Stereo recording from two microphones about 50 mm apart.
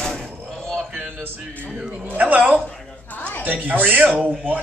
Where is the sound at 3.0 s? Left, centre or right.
Left.